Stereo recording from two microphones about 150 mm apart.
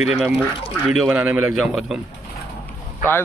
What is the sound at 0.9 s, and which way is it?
A man's voice, 10° right (ahead or behind).